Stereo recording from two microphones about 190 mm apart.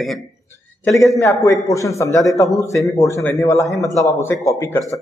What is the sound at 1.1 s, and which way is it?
A man's voice, 15° left (ahead or behind).